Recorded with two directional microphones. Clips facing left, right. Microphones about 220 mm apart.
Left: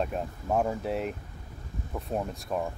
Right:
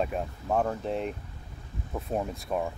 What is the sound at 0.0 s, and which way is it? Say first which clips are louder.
Speech: right 1 dB; 5° left (ahead or behind).